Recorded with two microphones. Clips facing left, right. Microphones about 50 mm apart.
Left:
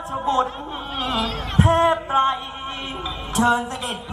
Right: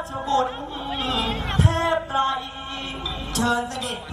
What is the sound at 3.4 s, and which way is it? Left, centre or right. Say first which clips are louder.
Speech: left 4 dB; left.